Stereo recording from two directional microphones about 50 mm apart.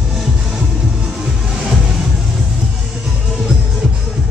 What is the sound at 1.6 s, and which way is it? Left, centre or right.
Music, centre.